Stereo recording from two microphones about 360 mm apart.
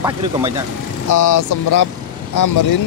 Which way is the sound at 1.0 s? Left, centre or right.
Left.